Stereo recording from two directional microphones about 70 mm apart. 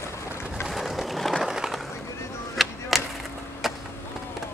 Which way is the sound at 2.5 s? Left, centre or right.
Centre.